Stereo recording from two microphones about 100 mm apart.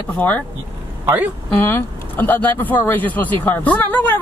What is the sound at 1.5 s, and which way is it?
Speech, 20° left (ahead or behind).